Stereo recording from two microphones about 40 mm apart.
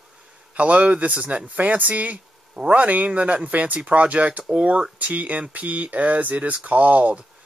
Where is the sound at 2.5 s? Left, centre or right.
Right.